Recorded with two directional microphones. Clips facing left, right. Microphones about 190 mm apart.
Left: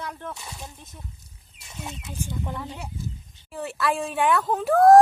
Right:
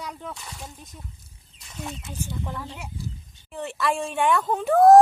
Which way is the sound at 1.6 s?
25° left (ahead or behind).